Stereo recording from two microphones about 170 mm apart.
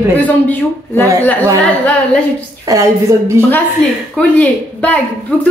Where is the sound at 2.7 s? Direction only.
20° right (ahead or behind).